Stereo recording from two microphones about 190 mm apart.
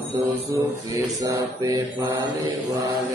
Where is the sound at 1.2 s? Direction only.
20° right (ahead or behind).